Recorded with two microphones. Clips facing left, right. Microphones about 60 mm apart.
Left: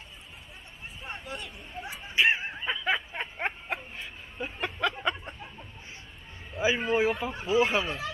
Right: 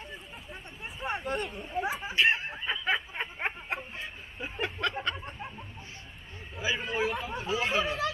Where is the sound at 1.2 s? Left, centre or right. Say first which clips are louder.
Right 7 dB; right.